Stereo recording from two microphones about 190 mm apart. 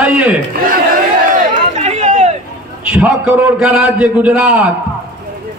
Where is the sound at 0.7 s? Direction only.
45° right (ahead or behind).